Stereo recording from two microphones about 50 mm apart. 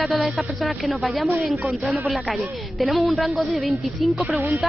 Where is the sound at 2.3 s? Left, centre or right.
Centre.